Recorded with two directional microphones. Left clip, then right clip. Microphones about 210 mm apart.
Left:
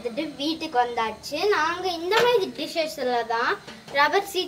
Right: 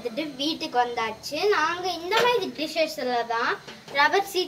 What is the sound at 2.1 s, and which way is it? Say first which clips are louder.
A child's voice: left 2 dB; 30° left (ahead or behind).